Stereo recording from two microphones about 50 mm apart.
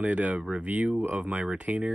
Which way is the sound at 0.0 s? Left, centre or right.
Right.